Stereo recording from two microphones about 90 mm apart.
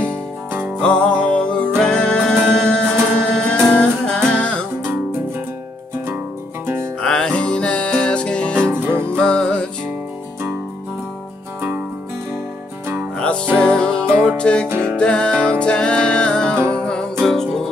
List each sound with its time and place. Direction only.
0.0 s music: 25° right (ahead or behind)
0.7 s music: 10° left (ahead or behind)
6.6 s music: 25° right (ahead or behind)
7.0 s music: 10° left (ahead or behind)
8.7 s music: 25° right (ahead or behind)
9.0 s music: 10° left (ahead or behind)
13.6 s music: 10° left (ahead or behind)